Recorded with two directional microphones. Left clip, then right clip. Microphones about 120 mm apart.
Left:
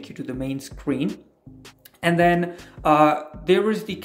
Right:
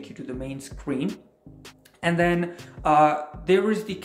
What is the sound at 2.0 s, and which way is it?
Speech, 30° left (ahead or behind).